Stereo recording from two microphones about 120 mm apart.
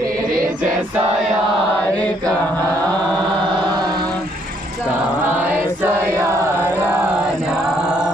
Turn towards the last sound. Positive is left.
turn(degrees=-25)  # may be behind; listen again after turning